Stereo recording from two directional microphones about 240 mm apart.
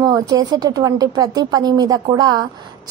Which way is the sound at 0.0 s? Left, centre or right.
Centre.